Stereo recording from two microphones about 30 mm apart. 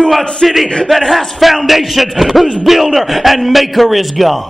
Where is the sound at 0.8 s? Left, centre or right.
Centre.